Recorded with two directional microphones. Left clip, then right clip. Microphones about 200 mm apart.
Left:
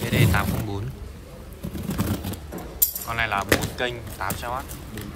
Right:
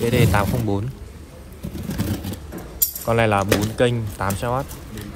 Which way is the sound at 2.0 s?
30° left (ahead or behind).